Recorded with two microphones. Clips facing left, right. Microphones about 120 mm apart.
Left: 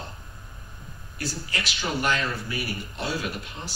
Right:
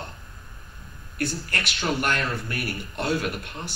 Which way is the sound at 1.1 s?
60° right (ahead or behind).